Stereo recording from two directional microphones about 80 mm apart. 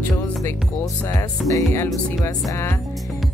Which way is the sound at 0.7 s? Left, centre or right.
Left.